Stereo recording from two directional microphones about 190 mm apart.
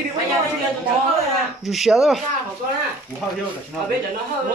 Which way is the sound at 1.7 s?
Centre (ahead or behind).